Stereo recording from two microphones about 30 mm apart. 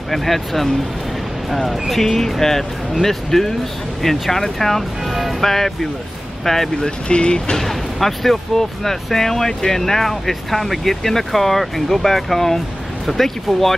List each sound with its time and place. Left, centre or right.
0.1 s speech: centre
7.1 s speech: left
7.5 s speech: centre